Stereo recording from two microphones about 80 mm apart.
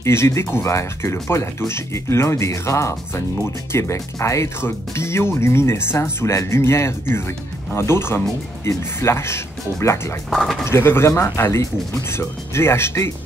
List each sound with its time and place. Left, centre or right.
0.0 s speech: left
10.3 s speech: centre
10.6 s speech: left